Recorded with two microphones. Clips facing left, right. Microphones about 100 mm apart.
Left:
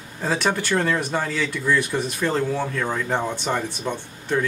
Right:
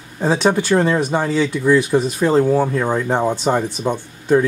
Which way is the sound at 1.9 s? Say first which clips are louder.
Right 8 dB; 30° right (ahead or behind).